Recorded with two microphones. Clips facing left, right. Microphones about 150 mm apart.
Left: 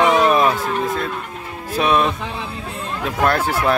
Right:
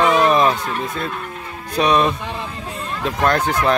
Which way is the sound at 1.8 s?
5° left (ahead or behind).